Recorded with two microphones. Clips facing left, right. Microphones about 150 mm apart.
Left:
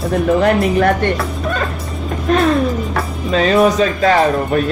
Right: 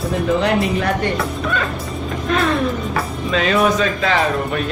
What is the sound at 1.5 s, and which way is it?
Music, 40° left (ahead or behind).